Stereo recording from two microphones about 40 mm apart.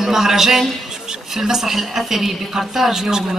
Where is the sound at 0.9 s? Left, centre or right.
Centre.